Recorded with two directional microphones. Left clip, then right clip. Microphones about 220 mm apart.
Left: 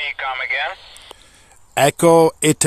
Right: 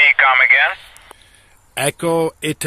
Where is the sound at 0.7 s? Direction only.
20° left (ahead or behind).